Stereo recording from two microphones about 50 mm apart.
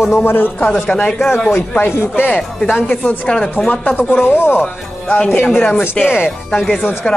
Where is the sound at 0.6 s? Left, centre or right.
Left.